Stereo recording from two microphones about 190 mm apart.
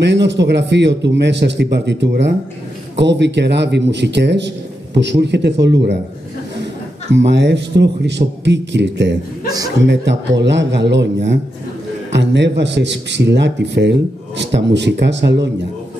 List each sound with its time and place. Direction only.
0.0 s a man's voice: 65° right (ahead or behind)